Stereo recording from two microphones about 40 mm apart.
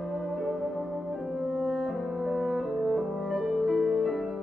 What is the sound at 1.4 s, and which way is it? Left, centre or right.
French horn, centre.